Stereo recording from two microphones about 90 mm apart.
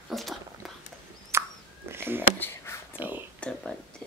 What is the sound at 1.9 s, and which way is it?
Speech, 25° right (ahead or behind).